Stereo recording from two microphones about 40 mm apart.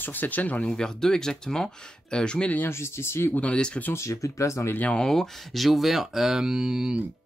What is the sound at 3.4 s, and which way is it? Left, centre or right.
Speech, left.